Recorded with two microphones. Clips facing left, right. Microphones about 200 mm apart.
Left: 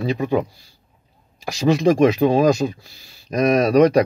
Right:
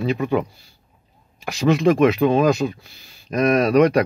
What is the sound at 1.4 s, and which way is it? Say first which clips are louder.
Speech: even; 35° left (ahead or behind).